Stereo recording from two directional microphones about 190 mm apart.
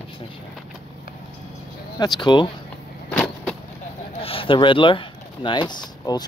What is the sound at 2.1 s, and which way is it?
Speech, 25° left (ahead or behind).